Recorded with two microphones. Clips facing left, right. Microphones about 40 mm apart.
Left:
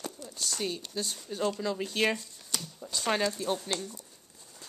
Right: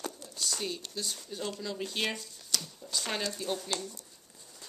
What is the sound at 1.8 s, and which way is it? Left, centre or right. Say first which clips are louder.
Speech: left 4 dB; centre.